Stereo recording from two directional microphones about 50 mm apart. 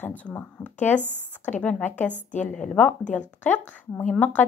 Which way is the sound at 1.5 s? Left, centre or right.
Left.